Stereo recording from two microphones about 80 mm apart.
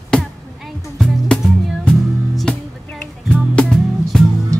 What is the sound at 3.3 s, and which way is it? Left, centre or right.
Music, centre.